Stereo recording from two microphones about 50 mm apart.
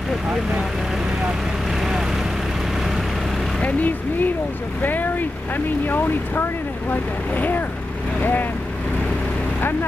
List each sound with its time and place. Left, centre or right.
1.8 s vehicle: centre
3.6 s speech: left